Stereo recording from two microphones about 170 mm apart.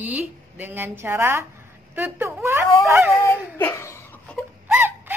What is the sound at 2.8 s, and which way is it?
Dog, 15° right (ahead or behind).